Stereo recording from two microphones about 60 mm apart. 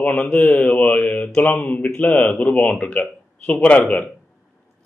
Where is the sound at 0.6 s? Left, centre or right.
Centre.